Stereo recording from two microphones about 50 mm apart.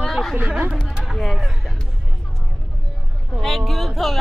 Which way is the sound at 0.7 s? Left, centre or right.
Centre.